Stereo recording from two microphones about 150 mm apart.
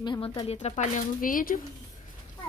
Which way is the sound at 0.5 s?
50° left (ahead or behind).